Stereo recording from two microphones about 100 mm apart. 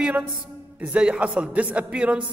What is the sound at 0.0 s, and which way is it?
A woman's voice, 20° right (ahead or behind).